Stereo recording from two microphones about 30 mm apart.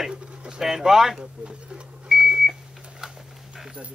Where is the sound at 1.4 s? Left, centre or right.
Right.